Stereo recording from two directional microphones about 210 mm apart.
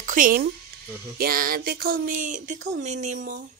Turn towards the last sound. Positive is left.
turn(degrees=-35)  # may be behind; listen again after turning